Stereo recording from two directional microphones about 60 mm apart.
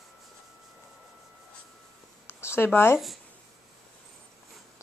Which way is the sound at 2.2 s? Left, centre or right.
Left.